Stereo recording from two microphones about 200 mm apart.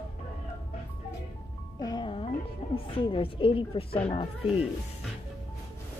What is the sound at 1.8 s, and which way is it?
Music, 25° left (ahead or behind).